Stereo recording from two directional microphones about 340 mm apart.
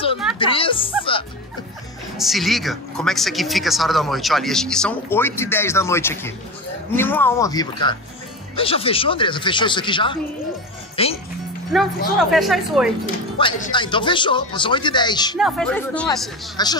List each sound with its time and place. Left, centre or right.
0.4 s speech: centre
2.1 s speech: centre
11.7 s speech: centre
13.4 s speech: centre
15.3 s speech: centre